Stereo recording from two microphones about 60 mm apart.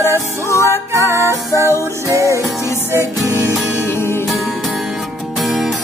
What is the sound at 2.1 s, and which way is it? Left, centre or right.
Music, right.